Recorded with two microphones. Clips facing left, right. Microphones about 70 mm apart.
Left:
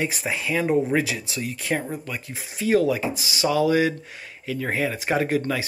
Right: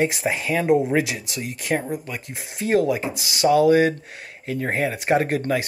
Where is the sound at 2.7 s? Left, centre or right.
Right.